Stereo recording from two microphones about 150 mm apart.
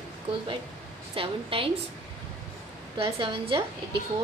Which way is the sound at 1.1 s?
35° right (ahead or behind).